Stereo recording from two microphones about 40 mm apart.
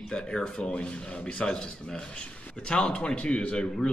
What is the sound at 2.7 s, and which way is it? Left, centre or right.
Speech, left.